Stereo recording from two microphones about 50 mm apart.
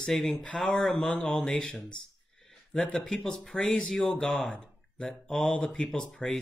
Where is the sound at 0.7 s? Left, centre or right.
Left.